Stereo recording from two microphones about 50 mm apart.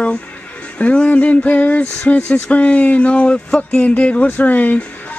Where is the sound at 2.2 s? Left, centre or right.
Left.